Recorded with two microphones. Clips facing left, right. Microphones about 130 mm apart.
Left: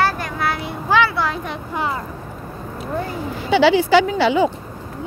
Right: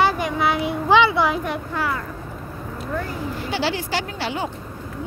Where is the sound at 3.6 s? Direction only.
90° left.